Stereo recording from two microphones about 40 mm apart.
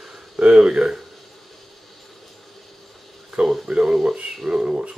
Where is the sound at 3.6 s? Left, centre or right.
Right.